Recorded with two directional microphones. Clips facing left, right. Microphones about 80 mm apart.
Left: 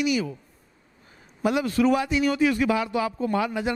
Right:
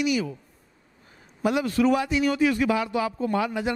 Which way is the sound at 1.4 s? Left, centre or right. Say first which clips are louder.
Even; centre.